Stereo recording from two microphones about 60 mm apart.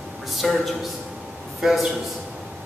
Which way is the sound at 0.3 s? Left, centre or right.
Centre.